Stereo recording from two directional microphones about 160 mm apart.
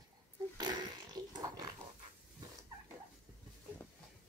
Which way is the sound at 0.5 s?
25° right (ahead or behind).